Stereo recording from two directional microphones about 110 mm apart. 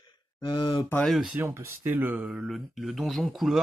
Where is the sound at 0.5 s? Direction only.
45° left (ahead or behind).